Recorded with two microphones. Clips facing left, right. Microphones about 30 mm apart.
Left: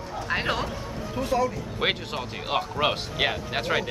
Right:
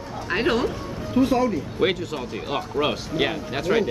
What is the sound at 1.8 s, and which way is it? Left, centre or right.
Speech, left.